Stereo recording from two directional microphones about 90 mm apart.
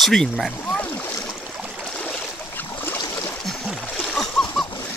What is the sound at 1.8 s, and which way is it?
Stream, 10° left (ahead or behind).